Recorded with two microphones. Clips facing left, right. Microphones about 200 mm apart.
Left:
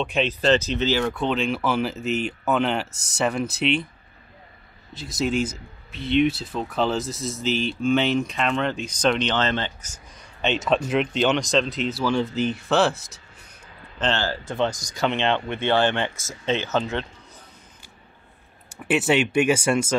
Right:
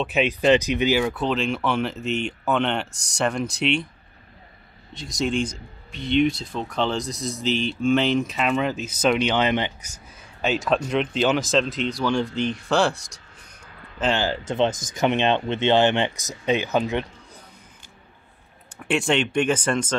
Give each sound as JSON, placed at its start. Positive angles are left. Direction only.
{"t": 0.0, "sound": "speech", "side_deg": -5}
{"t": 1.0, "sound": "speech", "side_deg": 0}
{"t": 4.9, "sound": "speech", "side_deg": 5}
{"t": 10.4, "sound": "speech", "side_deg": 0}
{"t": 13.9, "sound": "speech", "side_deg": -10}
{"t": 18.8, "sound": "speech", "side_deg": 5}